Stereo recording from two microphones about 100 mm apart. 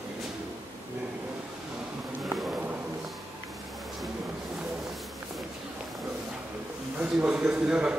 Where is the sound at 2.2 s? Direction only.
Centre (ahead or behind).